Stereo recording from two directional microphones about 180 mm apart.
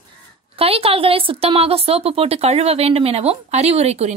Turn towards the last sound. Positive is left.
turn(degrees=-35)  # may be behind; listen again after turning